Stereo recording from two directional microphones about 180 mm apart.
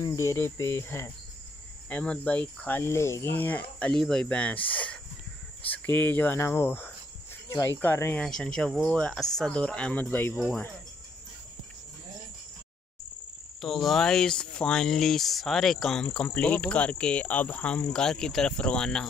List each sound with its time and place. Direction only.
0.0 s cricket: 15° left (ahead or behind)
7.4 s speech: 15° left (ahead or behind)
10.4 s cricket: 10° left (ahead or behind)
13.6 s speech: centre (ahead or behind)